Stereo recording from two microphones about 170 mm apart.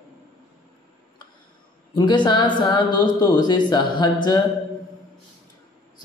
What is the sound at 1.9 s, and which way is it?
Speech, 25° left (ahead or behind).